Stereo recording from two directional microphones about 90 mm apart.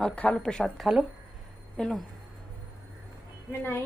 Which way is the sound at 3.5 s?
25° left (ahead or behind).